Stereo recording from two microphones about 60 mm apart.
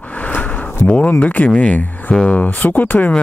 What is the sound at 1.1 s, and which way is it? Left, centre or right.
Speech, left.